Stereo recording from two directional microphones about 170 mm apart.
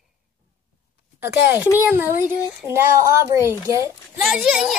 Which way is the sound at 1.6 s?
10° right (ahead or behind).